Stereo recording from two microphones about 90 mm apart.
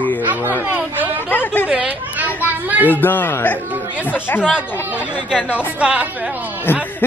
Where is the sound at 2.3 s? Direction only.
20° right (ahead or behind).